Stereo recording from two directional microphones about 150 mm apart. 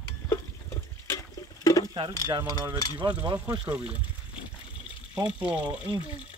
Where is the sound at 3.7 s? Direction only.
5° right (ahead or behind).